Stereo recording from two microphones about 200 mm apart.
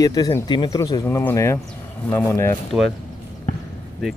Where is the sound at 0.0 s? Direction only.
15° left (ahead or behind).